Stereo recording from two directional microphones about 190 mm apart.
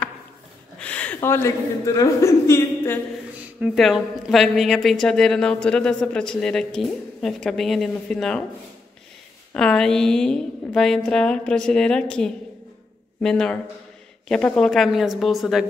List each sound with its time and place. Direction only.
0.7 s speech: 5° left (ahead or behind)
3.6 s speech: centre (ahead or behind)
9.5 s speech: 5° left (ahead or behind)